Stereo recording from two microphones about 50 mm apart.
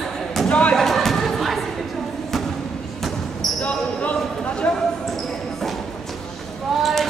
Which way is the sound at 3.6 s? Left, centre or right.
Left.